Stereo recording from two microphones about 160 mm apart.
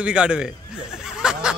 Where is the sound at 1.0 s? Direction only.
5° right (ahead or behind).